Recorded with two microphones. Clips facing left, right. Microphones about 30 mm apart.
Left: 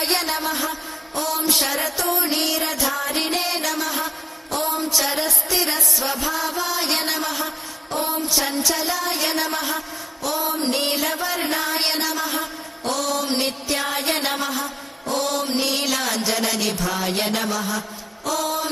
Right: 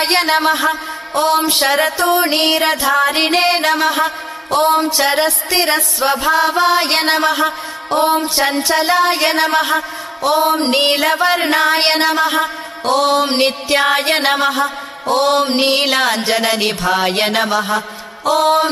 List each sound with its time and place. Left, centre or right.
0.0 s a man's voice: right